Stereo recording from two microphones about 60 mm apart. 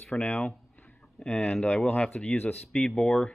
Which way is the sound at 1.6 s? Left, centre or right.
Left.